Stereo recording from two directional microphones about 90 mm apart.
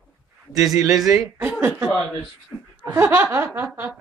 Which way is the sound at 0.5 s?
5° right (ahead or behind).